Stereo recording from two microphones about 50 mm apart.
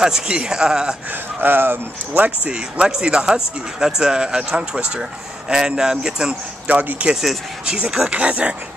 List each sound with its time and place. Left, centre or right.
0.0 s speech: centre
1.4 s speech: right
2.4 s speech: centre
6.7 s speech: right
7.6 s speech: centre
8.1 s speech: right